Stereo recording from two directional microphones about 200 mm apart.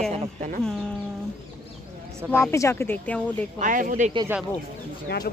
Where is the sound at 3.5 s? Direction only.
40° right (ahead or behind).